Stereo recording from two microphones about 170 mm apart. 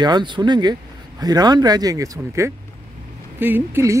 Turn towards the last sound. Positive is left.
turn(degrees=-15)  # may be behind; listen again after turning